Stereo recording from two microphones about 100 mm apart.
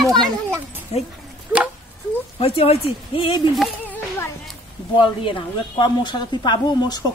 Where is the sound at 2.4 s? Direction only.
85° left; by 3.5 s 60° left (ahead or behind).